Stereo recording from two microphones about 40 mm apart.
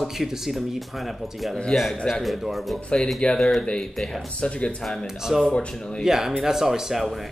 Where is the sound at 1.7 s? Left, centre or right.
Left.